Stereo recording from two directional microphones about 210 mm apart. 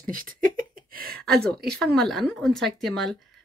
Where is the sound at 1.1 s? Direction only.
5° left (ahead or behind).